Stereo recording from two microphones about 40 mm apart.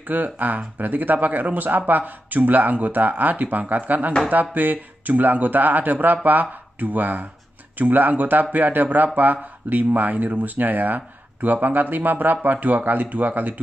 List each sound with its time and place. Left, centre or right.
0.0 s speech: right